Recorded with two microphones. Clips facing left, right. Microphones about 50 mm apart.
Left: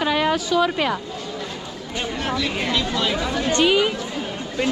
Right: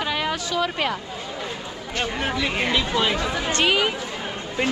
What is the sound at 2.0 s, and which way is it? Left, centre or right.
Speech, centre.